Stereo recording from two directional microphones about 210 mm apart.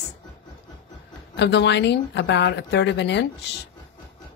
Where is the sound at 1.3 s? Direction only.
55° left (ahead or behind).